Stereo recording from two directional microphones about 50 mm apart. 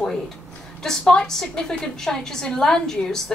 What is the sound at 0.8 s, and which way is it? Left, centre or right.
A woman's voice, centre.